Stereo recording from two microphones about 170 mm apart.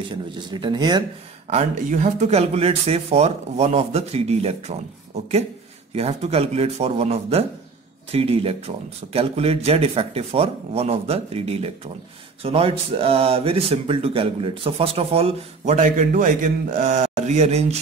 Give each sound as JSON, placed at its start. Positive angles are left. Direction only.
{"t": 0.1, "sound": "speech", "side_deg": -30}
{"t": 1.5, "sound": "speech", "side_deg": -45}